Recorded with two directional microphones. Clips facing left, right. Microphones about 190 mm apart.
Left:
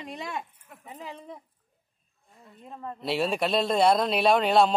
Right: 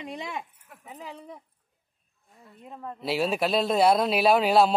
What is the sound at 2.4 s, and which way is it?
Speech, 5° right (ahead or behind).